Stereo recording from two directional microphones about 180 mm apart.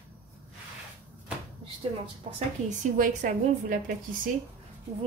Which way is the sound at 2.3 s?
45° right (ahead or behind).